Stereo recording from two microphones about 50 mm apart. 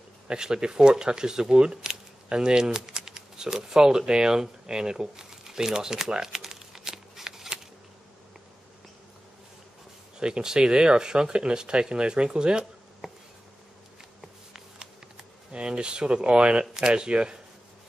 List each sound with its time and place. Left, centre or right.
0.3 s speech: centre
10.2 s speech: centre
14.5 s a sound: centre
16.7 s speech: centre